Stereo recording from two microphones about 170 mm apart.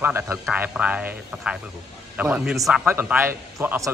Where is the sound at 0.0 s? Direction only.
10° right (ahead or behind).